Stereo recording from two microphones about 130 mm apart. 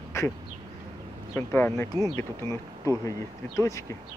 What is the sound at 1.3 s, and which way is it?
Speech, 15° left (ahead or behind).